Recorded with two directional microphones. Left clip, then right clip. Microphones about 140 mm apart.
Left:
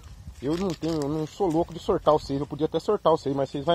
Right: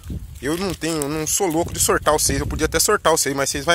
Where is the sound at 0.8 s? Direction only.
50° right (ahead or behind).